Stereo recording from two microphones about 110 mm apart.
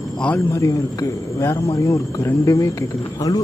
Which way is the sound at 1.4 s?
25° left (ahead or behind).